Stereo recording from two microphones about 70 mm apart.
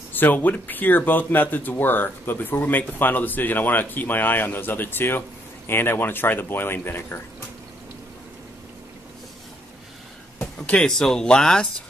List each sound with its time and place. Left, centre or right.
0.1 s speech: left
10.7 s speech: centre